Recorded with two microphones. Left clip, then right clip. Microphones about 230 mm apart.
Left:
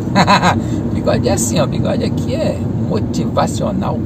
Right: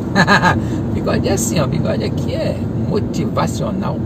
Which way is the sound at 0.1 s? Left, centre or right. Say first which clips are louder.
Left 1 dB; centre.